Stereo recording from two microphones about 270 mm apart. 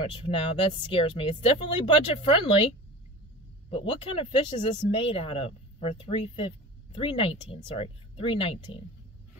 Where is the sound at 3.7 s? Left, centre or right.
Centre.